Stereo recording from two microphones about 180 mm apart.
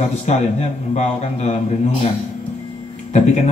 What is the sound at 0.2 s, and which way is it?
A man's voice, 40° left (ahead or behind).